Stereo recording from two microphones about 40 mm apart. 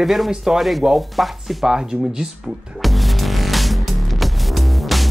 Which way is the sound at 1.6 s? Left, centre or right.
Centre.